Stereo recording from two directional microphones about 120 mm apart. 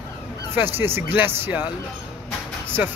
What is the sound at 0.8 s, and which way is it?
Speech, 20° right (ahead or behind).